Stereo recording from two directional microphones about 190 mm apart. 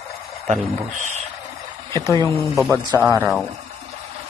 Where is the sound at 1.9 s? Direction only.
15° left (ahead or behind).